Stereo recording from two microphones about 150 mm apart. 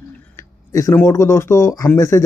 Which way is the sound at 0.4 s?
20° left (ahead or behind).